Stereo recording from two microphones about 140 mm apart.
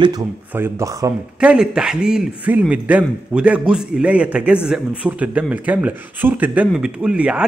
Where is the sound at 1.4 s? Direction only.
5° right (ahead or behind).